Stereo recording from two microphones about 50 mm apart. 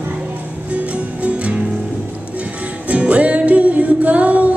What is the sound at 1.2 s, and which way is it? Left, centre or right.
Music, right.